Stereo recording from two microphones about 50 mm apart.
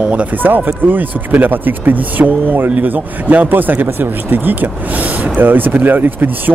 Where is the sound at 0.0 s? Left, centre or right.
Right.